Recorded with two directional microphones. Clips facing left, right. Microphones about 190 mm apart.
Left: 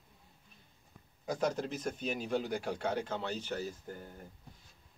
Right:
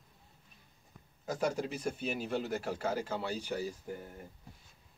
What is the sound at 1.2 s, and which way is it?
A man's voice, 5° right (ahead or behind).